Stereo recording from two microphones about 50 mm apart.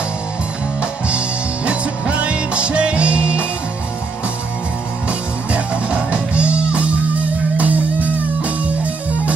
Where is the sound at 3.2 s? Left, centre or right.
Left.